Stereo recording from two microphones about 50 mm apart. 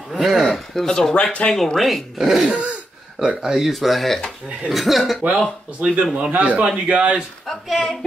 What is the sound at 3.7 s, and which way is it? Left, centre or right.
Speech, centre.